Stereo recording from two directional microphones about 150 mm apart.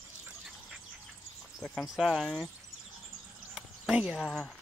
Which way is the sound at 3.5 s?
5° right (ahead or behind).